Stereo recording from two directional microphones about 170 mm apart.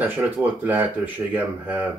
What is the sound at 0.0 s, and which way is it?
Speech, 10° right (ahead or behind).